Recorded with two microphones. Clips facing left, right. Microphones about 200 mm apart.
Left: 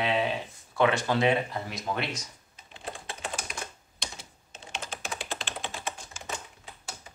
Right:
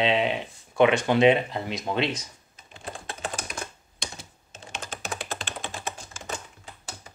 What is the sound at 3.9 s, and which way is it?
Computer keyboard, 45° right (ahead or behind).